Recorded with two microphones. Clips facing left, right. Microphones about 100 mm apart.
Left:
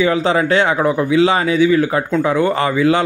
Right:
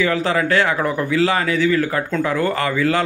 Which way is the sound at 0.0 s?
20° left (ahead or behind).